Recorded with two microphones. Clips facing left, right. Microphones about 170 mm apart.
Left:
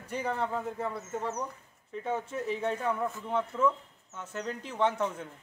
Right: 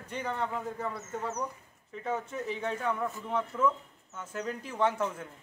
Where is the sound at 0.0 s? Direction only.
5° left (ahead or behind).